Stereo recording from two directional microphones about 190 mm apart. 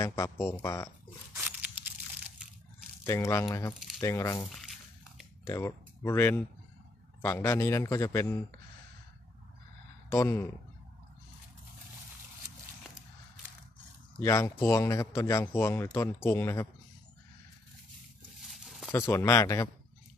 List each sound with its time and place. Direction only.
0.0 s speech: 15° left (ahead or behind)
1.3 s a sound: 10° right (ahead or behind)
3.0 s speech: 15° left (ahead or behind)
4.6 s a sound: centre (ahead or behind)
5.4 s speech: 15° left (ahead or behind)
10.0 s speech: 15° left (ahead or behind)
14.2 s speech: 15° left (ahead or behind)
18.4 s a sound: centre (ahead or behind)
18.9 s speech: 15° left (ahead or behind)